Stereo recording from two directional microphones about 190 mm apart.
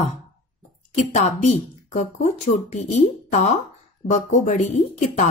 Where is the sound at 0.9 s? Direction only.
35° left (ahead or behind).